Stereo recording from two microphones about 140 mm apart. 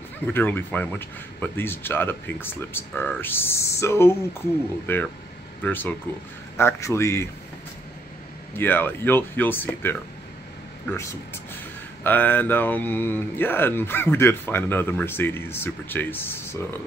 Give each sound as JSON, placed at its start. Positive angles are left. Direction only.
{"t": 0.3, "sound": "a man's voice", "side_deg": 15}
{"t": 8.5, "sound": "a man's voice", "side_deg": 15}